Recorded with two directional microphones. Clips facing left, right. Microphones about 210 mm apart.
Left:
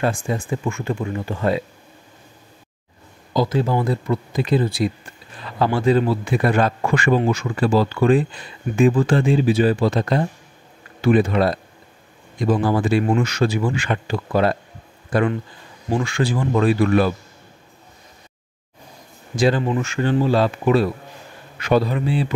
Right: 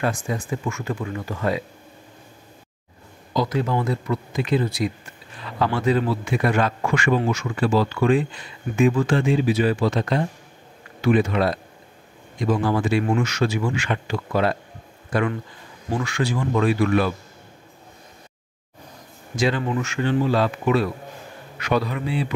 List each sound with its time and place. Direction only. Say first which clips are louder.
0.0 s speech: left 3 dB; 30° left (ahead or behind)
3.3 s speech: left 3 dB; 30° left (ahead or behind)
12.6 s speech: left 2 dB; 35° left (ahead or behind)
19.3 s speech: left 4 dB; 35° left (ahead or behind)